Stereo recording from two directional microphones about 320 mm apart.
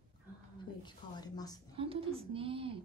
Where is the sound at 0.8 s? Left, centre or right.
Centre.